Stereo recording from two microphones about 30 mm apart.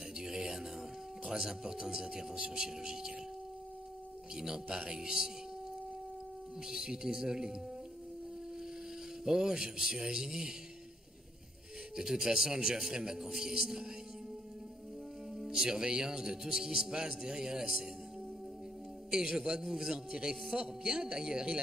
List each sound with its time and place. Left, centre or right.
0.2 s music: right
1.2 s a man's voice: centre
4.6 s a man's voice: right
6.7 s a man's voice: centre
9.2 s a man's voice: centre
12.0 s a man's voice: centre
15.3 s music: centre
15.6 s a man's voice: right
19.0 s a man's voice: right